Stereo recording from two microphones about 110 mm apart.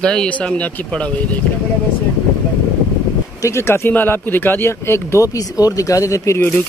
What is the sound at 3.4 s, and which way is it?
Speech, 25° left (ahead or behind).